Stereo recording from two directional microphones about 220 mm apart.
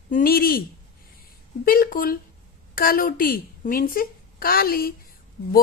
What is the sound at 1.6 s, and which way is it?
A woman's voice, 40° left (ahead or behind).